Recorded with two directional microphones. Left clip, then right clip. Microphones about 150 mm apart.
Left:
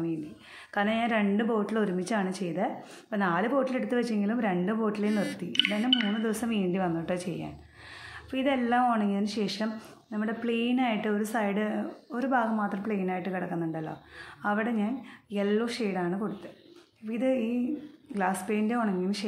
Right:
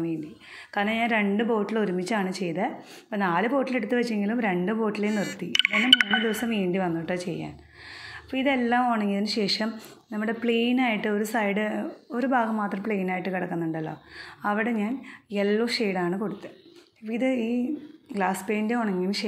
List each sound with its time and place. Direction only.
0.7 s a woman's voice: 10° right (ahead or behind)